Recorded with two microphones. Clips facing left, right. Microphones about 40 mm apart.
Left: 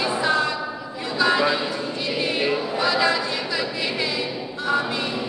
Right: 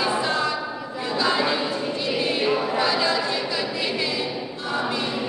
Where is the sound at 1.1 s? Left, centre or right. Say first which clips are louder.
Left 3 dB; left.